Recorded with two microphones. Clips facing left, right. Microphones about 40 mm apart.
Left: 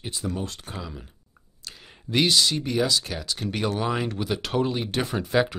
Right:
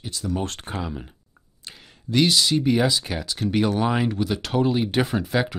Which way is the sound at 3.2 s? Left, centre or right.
Centre.